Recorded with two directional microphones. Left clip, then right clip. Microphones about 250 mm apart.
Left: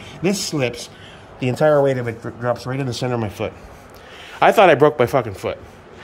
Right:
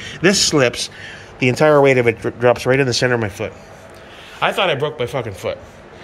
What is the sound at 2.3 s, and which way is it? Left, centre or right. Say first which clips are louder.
Speech: right 8 dB; right.